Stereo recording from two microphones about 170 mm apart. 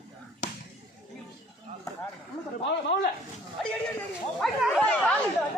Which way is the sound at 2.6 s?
85° left.